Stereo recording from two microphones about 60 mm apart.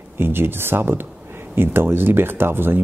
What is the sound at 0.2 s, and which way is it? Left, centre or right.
Speech, right.